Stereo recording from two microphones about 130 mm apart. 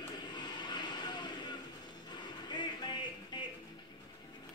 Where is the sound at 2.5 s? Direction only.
35° left (ahead or behind).